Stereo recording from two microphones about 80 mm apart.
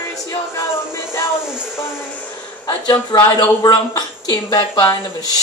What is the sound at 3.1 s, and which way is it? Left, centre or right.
Speech, left.